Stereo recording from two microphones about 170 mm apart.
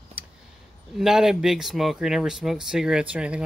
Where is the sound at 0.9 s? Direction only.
5° right (ahead or behind).